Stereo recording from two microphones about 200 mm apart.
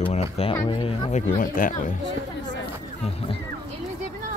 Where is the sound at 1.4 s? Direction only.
45° left (ahead or behind).